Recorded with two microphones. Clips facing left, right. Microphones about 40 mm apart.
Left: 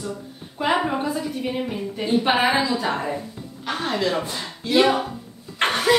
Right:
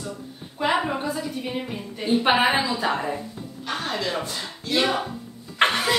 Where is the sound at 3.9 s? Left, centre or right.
Centre.